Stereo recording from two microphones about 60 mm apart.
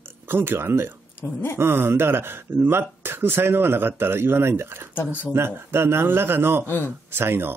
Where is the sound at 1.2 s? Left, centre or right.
Left.